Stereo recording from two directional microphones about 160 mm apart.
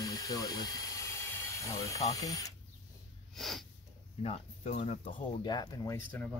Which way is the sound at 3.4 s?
Centre (ahead or behind).